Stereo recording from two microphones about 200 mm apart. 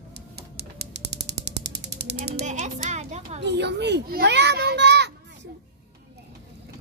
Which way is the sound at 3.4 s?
60° right (ahead or behind).